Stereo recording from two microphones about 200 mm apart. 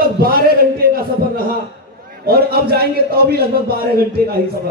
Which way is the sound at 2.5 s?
50° right (ahead or behind).